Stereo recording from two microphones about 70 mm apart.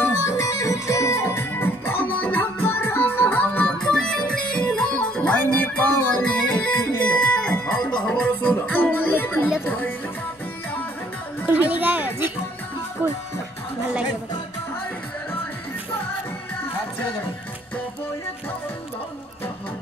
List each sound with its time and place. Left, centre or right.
0.2 s music: left
1.6 s music: left
3.7 s music: centre
5.4 s music: left
11.4 s music: right